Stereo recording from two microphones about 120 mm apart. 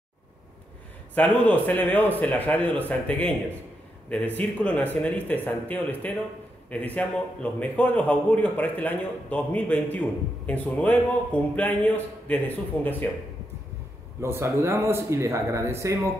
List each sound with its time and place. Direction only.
1.1 s a man's voice: 15° left (ahead or behind)
14.2 s speech: 20° right (ahead or behind)